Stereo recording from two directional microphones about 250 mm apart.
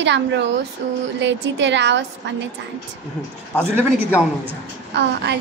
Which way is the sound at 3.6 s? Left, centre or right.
Centre.